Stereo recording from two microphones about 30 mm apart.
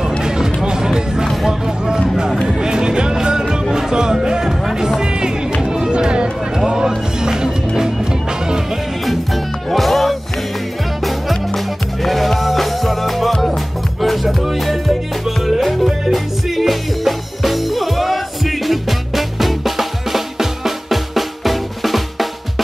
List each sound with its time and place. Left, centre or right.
0.2 s music: right
1.2 s music: centre
1.5 s music: right
9.0 s music: centre
11.5 s music: centre